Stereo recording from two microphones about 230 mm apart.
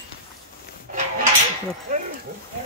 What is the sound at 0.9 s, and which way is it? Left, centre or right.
Dishes, right.